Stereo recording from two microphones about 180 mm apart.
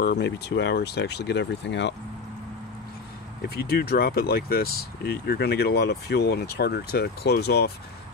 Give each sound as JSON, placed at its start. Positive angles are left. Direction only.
{"t": 0.0, "sound": "speech", "side_deg": 65}
{"t": 3.4, "sound": "speech", "side_deg": 60}